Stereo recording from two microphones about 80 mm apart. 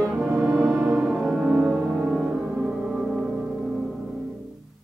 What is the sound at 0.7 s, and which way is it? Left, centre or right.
Music, right.